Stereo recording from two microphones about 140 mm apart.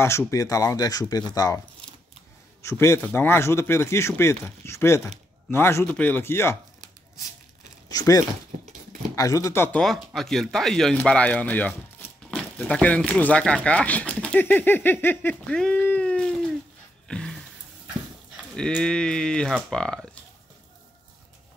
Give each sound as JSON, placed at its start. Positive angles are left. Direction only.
{"t": 0.0, "sound": "speech", "side_deg": 20}
{"t": 2.6, "sound": "speech", "side_deg": 20}
{"t": 7.9, "sound": "speech", "side_deg": 25}
{"t": 9.8, "sound": "speech", "side_deg": 0}
{"t": 17.1, "sound": "a sound", "side_deg": 5}
{"t": 18.3, "sound": "speech", "side_deg": 0}